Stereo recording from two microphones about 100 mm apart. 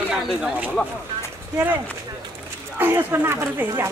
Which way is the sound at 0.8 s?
10° left (ahead or behind).